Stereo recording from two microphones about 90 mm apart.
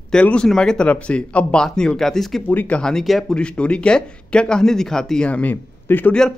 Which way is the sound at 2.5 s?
15° left (ahead or behind).